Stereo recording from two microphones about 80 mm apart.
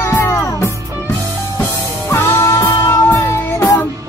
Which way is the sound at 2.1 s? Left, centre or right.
Left.